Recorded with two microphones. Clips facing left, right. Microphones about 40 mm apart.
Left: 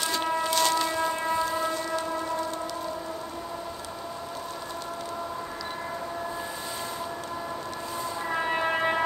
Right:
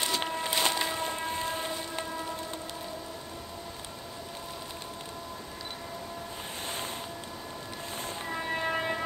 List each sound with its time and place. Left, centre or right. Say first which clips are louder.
0.2 s train: left 5 dB; right
8.3 s train: left 5 dB; left